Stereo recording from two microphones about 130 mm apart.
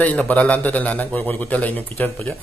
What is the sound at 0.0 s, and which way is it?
A man's voice, 10° left (ahead or behind).